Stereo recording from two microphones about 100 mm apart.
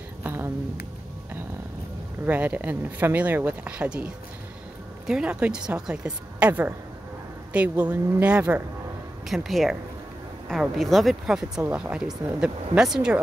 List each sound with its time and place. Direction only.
0.2 s a sound: 25° right (ahead or behind)
2.2 s speech: 15° right (ahead or behind)
9.3 s speech: centre (ahead or behind)
10.8 s speech: centre (ahead or behind)
11.6 s speech: 15° right (ahead or behind)
12.7 s speech: 5° right (ahead or behind)